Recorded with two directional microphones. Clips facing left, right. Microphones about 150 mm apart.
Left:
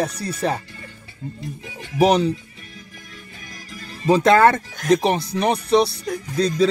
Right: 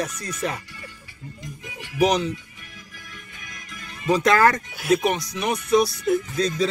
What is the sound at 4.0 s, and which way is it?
Speech, 30° left (ahead or behind).